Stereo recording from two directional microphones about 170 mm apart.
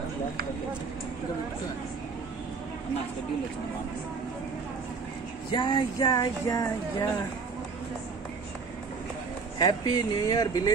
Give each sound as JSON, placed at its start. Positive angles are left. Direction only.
{"t": 5.5, "sound": "speech", "side_deg": 25}
{"t": 9.6, "sound": "speech", "side_deg": 25}